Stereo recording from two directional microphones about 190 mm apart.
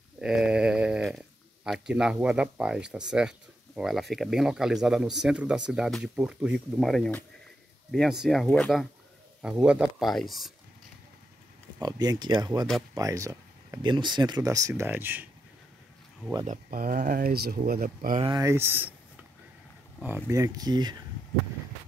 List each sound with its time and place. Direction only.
0.2 s speech: 5° right (ahead or behind)
11.8 s speech: 20° right (ahead or behind)
16.4 s speech: 45° right (ahead or behind)
18.2 s speech: 20° right (ahead or behind)
20.2 s speech: 15° right (ahead or behind)